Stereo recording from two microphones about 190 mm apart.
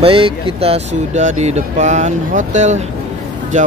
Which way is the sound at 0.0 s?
30° right (ahead or behind).